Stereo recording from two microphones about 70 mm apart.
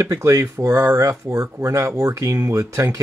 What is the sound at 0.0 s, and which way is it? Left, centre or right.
Speech, right.